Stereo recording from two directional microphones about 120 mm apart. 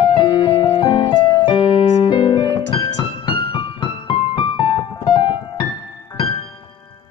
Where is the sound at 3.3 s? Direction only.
45° left (ahead or behind).